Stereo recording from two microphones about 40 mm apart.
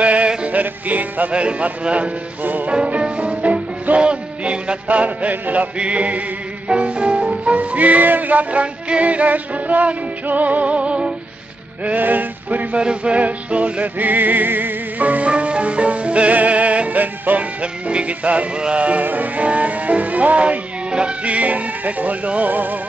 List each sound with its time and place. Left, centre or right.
0.0 s male singing: right
0.4 s music: right
1.3 s music: right
2.4 s music: right
3.0 s music: right
11.8 s music: right
12.7 s music: right
14.0 s music: right
15.2 s music: right
17.6 s music: right
19.0 s music: right
22.5 s music: right